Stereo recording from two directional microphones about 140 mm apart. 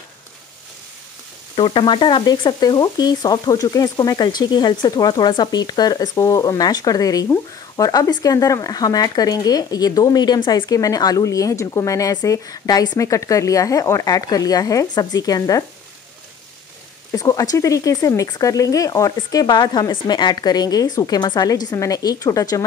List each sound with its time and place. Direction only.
1.6 s speech: 35° left (ahead or behind)
17.1 s speech: 25° left (ahead or behind)